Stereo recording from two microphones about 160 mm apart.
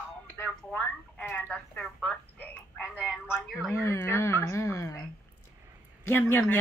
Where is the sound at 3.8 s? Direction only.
20° left (ahead or behind).